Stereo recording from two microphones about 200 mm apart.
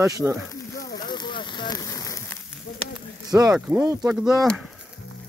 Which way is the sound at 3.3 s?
15° right (ahead or behind).